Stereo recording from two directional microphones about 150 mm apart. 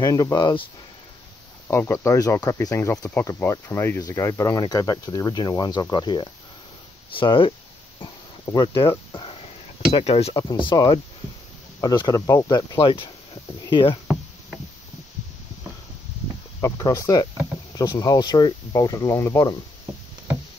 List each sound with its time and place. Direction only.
0.0 s speech: 25° left (ahead or behind)
1.7 s speech: 20° left (ahead or behind); by 7.5 s 35° left (ahead or behind)
8.0 s a sound: 30° left (ahead or behind)
9.9 s speech: 40° left (ahead or behind)
16.6 s speech: 25° left (ahead or behind)